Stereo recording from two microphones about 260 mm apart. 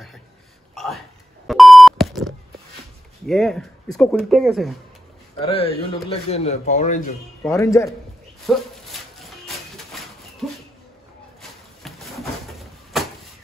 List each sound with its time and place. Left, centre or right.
0.7 s speech: centre
1.5 s beep: centre
3.3 s speech: centre
5.4 s a man's voice: left
7.4 s a man's voice: centre
8.5 s a sound: centre
11.8 s a sound: centre